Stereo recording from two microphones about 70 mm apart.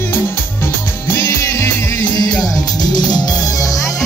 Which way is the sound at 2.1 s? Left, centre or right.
Left.